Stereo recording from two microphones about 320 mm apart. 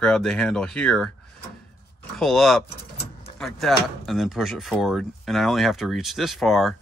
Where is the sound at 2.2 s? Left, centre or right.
Centre.